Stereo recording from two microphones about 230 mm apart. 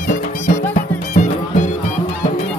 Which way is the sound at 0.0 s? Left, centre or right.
Left.